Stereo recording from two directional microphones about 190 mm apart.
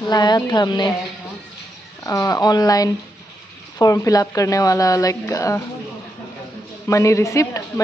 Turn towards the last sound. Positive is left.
turn(degrees=15)  # may be behind; listen again after turning